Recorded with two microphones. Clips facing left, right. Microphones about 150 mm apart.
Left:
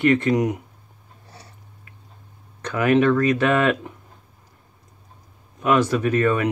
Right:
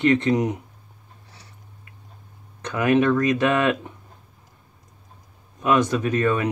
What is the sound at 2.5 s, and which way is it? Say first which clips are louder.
Speech: left 1 dB; 15° right (ahead or behind).